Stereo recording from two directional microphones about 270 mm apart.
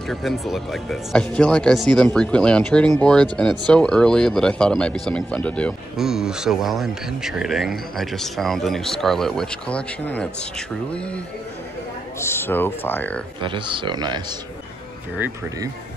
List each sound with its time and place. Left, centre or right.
0.1 s speech: centre
12.2 s speech: centre
13.4 s speech: centre